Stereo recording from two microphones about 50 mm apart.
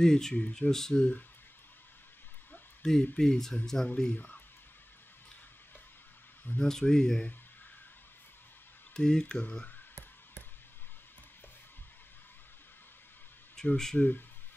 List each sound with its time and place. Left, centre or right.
0.0 s speech: centre
0.4 s speech: left
0.7 s speech: centre
2.8 s speech: centre
4.1 s speech: left
6.6 s speech: centre
8.9 s speech: centre
13.6 s a sound: centre
13.9 s speech: left